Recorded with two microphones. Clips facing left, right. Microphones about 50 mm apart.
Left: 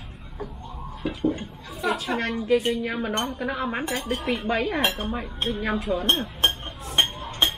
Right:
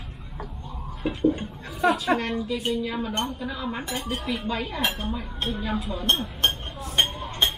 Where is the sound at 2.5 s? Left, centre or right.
Left.